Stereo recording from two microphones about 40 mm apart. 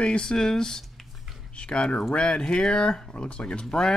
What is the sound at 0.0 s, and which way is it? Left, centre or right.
Speech, left.